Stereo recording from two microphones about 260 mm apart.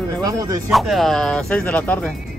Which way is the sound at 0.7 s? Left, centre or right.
Centre.